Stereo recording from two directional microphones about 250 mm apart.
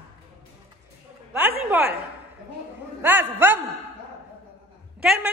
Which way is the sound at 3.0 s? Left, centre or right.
Centre.